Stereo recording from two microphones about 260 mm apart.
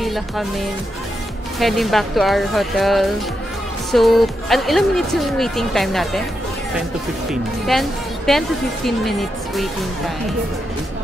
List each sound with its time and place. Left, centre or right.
0.0 s music: centre
1.6 s a woman's voice: centre
7.7 s a woman's voice: centre